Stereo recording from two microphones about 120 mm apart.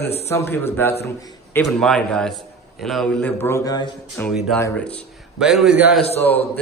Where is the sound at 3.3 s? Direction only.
20° left (ahead or behind).